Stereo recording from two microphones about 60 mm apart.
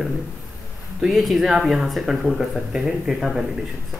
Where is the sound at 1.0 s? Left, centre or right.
Centre.